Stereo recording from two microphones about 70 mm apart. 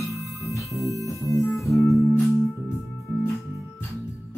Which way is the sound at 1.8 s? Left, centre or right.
Left.